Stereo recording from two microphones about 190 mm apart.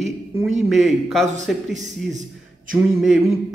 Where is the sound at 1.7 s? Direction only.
40° right (ahead or behind).